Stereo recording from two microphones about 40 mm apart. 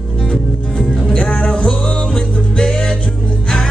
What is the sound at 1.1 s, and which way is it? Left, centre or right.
Music, left.